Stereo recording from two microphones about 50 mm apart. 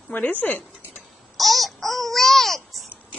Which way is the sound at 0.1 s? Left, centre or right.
Left.